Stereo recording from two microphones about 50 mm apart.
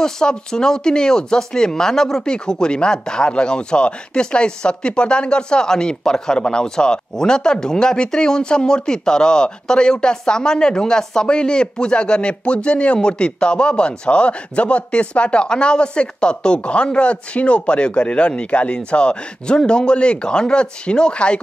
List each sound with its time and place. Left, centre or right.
0.0 s speech: centre